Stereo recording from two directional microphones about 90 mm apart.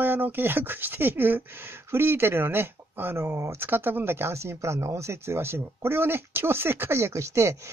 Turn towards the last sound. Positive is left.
turn(degrees=-30)  # may be behind; listen again after turning